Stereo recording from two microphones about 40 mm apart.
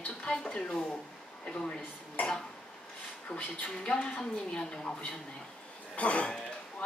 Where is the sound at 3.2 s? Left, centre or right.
Left.